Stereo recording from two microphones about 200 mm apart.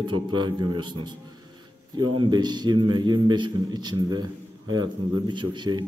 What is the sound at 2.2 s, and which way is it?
A man's voice, 20° right (ahead or behind).